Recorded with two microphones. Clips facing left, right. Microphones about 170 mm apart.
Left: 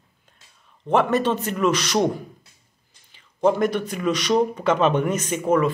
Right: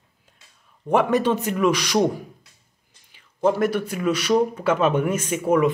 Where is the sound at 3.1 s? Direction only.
5° right (ahead or behind).